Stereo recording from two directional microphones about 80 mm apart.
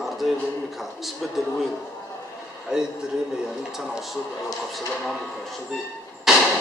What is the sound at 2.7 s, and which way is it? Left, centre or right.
A man's voice, centre.